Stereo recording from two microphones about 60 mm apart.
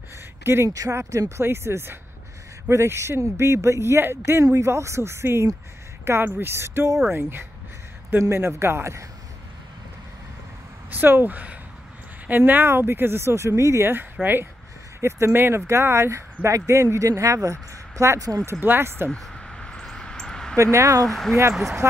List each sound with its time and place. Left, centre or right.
0.4 s speech: right
0.7 s speech: right
1.4 s speech: right
8.2 s speech: right
10.9 s speech: right
14.2 s speech: right
15.0 s speech: right
19.3 s a sound: centre
20.5 s speech: right
21.1 s speech: centre